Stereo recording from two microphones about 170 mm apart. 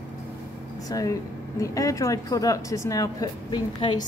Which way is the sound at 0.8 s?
20° left (ahead or behind).